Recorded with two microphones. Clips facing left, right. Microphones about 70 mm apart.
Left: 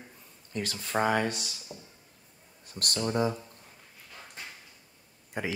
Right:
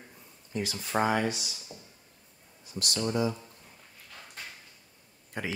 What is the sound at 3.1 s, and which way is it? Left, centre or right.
Speech, left.